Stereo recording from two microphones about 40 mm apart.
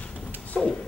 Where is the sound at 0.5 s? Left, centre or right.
Centre.